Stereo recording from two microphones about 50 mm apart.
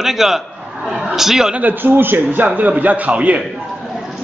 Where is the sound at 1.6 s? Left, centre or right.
Right.